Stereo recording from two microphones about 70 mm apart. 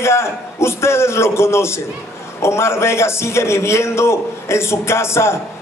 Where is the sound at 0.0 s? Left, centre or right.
Left.